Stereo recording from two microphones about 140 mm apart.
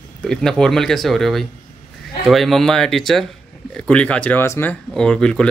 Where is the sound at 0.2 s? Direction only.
5° left (ahead or behind).